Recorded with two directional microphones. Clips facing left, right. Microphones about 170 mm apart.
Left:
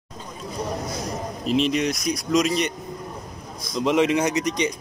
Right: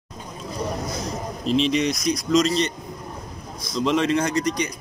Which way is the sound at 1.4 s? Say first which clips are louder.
Right 1 dB; 5° left (ahead or behind).